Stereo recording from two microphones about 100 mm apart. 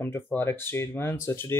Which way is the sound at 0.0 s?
20° left (ahead or behind).